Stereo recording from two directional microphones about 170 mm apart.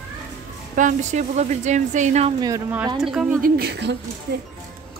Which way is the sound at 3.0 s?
5° right (ahead or behind).